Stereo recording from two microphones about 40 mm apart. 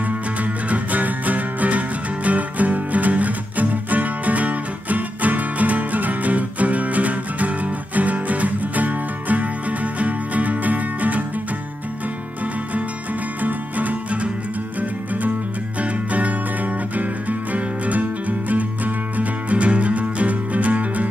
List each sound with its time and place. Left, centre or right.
0.4 s music: right
13.4 s music: right
15.8 s music: right
19.1 s music: right